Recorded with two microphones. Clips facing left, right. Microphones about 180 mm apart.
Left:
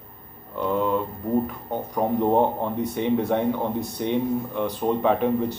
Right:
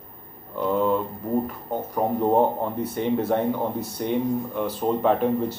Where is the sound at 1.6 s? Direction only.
5° right (ahead or behind).